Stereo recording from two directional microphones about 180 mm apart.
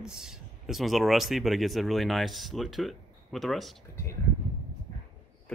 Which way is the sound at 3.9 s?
15° left (ahead or behind).